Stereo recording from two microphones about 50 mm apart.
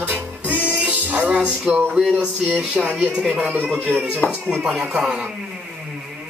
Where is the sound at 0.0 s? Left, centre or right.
Right.